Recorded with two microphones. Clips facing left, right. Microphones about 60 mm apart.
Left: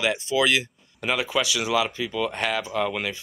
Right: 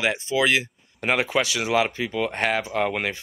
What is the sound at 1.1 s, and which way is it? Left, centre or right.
Speech, right.